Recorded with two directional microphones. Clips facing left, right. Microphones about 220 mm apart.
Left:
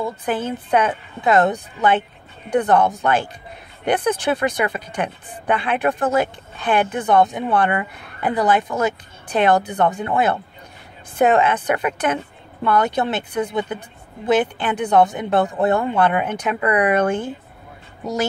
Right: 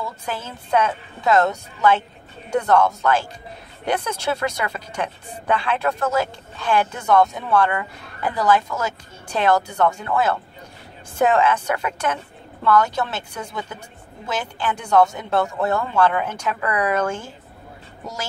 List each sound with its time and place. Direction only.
0.5 s speech: 15° left (ahead or behind)